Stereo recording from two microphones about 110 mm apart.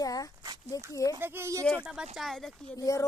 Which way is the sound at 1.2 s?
20° right (ahead or behind).